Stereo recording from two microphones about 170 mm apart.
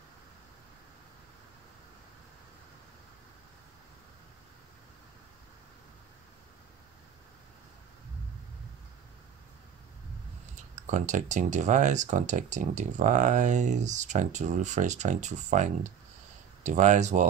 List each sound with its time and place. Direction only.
10.5 s speech: 45° right (ahead or behind)